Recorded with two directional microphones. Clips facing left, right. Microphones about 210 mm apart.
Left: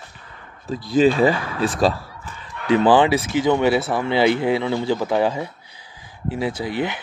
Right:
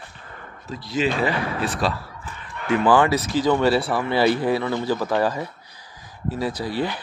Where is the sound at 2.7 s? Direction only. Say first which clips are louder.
Left 3 dB; 25° left (ahead or behind).